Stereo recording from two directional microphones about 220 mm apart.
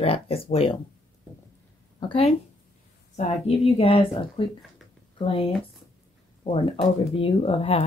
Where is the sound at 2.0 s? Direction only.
25° left (ahead or behind).